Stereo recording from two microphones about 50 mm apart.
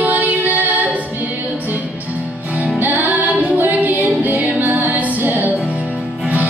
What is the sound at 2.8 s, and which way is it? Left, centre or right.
Music, right.